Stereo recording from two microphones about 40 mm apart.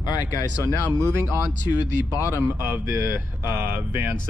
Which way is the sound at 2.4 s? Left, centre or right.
Right.